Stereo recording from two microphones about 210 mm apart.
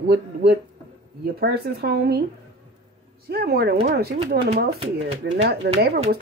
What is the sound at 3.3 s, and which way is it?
Speech, 50° right (ahead or behind).